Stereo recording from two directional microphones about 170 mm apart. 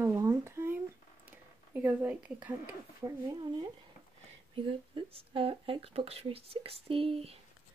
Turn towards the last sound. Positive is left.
turn(degrees=-35)  # may be behind; listen again after turning